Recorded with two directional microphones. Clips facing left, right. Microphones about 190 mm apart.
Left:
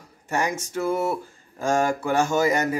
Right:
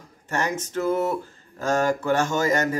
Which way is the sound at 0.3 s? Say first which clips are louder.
Left 1 dB; 10° left (ahead or behind).